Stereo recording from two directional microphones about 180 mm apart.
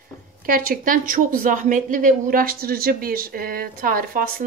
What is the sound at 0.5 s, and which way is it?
A woman's voice, 50° right (ahead or behind).